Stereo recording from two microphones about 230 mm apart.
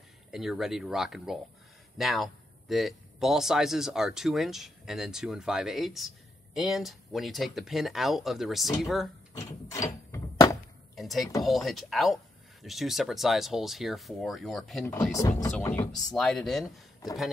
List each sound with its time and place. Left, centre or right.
0.3 s speech: centre
9.5 s a sound: centre
11.0 s speech: centre
15.1 s speech: centre
16.6 s speech: centre